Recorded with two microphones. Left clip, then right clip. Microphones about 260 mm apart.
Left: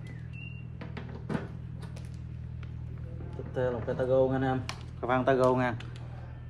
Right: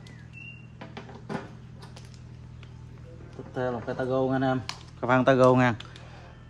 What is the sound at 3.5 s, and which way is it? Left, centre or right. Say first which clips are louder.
Speech: right 1 dB; right.